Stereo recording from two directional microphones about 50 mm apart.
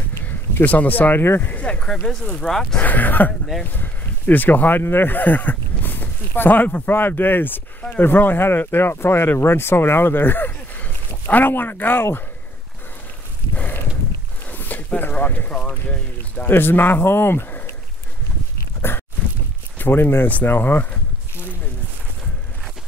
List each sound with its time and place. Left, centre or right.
0.7 s speech: left
1.2 s speech: left
1.5 s speech: left
2.4 s speech: centre
2.8 s speech: left
14.5 s a sound: left
16.3 s speech: left
18.8 s a sound: left
19.8 s speech: left
20.2 s speech: left